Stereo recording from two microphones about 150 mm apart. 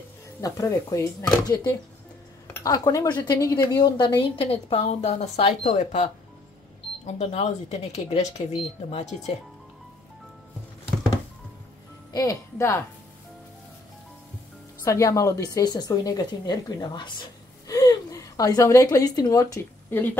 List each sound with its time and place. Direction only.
0.4 s a woman's voice: 20° left (ahead or behind); by 6.0 s 50° left (ahead or behind)
7.1 s speech: 50° left (ahead or behind)
12.1 s speech: 25° left (ahead or behind)
14.8 s a woman's voice: 20° left (ahead or behind)